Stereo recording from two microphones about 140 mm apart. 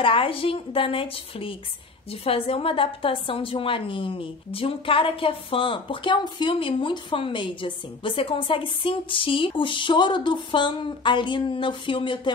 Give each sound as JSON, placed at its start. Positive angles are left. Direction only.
{"t": 0.0, "sound": "a woman's voice", "side_deg": 40}